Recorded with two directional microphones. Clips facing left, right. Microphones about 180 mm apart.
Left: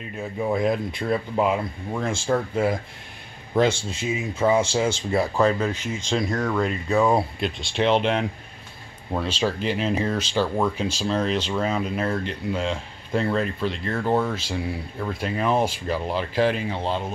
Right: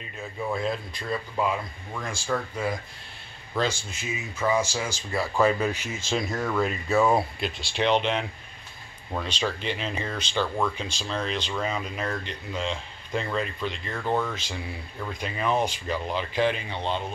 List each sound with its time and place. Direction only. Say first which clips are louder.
0.4 s speech: left 6 dB; 15° left (ahead or behind)
3.5 s speech: left 7 dB; 25° left (ahead or behind)
5.4 s speech: right 3 dB; 10° right (ahead or behind)